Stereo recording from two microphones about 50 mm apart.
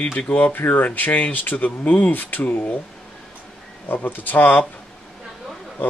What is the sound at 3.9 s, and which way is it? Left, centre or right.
Speech, left.